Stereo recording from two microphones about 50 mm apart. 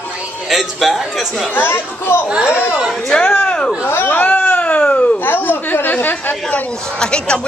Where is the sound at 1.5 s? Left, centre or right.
Left.